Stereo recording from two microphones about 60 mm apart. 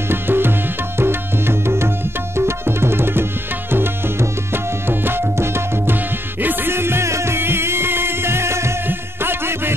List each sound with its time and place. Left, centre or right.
0.1 s tabla: right
0.9 s music: right
2.3 s tabla: right
3.7 s music: right
4.8 s tabla: right
6.4 s music: right